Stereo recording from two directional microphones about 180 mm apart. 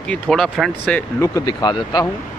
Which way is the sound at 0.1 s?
5° left (ahead or behind).